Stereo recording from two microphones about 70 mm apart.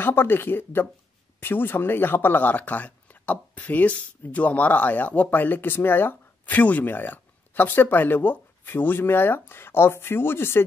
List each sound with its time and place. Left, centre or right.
0.0 s speech: left